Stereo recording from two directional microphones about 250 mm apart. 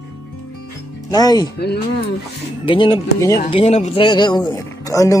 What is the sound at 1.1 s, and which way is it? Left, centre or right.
Speech, centre.